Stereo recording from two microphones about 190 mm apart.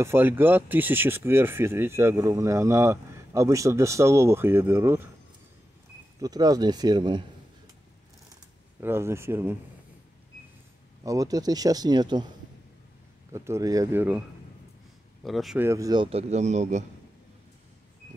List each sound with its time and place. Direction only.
0.0 s speech: 10° right (ahead or behind)
6.2 s speech: 20° right (ahead or behind)
8.8 s speech: 10° right (ahead or behind)
11.1 s speech: 20° right (ahead or behind)
13.3 s speech: 15° right (ahead or behind)
15.2 s speech: centre (ahead or behind)
15.6 s speech: 15° right (ahead or behind); by 16.8 s 40° right (ahead or behind)